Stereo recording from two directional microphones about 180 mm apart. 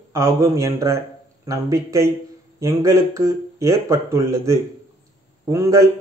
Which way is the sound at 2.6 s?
15° right (ahead or behind).